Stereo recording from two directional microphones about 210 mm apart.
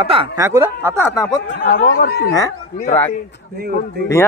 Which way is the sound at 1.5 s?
40° left (ahead or behind).